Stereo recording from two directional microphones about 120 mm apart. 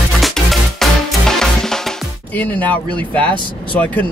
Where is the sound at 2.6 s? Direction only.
15° left (ahead or behind).